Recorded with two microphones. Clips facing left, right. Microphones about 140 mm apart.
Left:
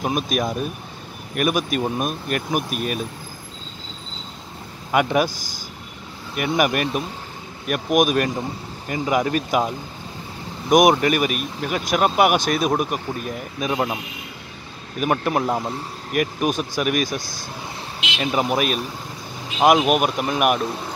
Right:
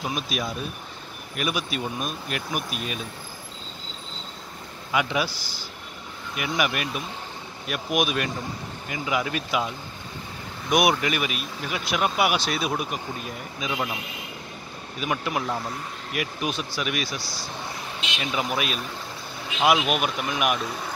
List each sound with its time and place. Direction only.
0.0 s speech: 50° left (ahead or behind)
4.9 s speech: 45° left (ahead or behind)
15.0 s speech: 50° left (ahead or behind)